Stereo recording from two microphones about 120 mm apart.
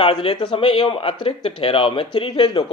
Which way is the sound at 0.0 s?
50° left (ahead or behind).